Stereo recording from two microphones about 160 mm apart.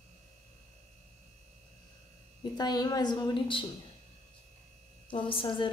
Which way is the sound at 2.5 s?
25° left (ahead or behind).